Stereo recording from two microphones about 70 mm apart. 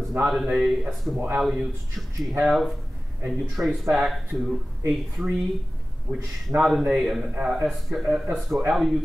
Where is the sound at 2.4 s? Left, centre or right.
Centre.